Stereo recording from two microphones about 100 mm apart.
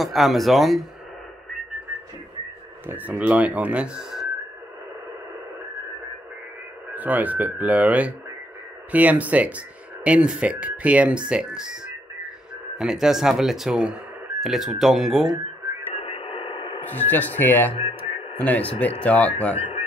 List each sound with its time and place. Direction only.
0.0 s speech: centre (ahead or behind)
2.9 s speech: 15° right (ahead or behind)
6.9 s speech: 15° right (ahead or behind)
15.9 s radio: 75° left (ahead or behind); by 16.8 s 60° left (ahead or behind)
16.9 s speech: 20° left (ahead or behind)
17.7 s speech: 70° left (ahead or behind)
18.4 s speech: 15° left (ahead or behind)